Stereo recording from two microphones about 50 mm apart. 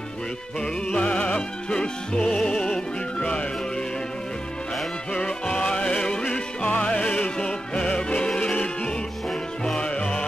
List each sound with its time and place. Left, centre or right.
0.9 s music: left
5.1 s music: left
9.8 s music: left